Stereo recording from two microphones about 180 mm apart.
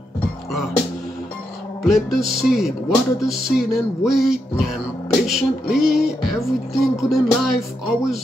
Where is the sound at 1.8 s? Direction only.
Centre (ahead or behind).